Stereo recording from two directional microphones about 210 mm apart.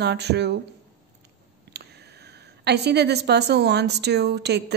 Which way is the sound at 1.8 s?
50° right (ahead or behind).